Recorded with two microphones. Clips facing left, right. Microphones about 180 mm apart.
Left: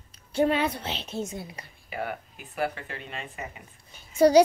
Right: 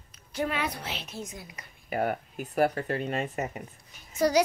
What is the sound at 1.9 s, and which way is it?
Speech, 45° right (ahead or behind).